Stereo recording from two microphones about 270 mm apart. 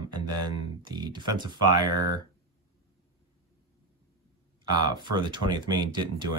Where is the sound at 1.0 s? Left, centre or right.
Centre.